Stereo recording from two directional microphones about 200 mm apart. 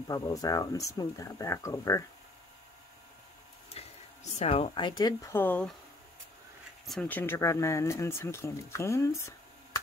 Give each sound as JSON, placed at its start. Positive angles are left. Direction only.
{"t": 0.1, "sound": "speech", "side_deg": 20}
{"t": 3.7, "sound": "speech", "side_deg": 30}
{"t": 6.9, "sound": "speech", "side_deg": 5}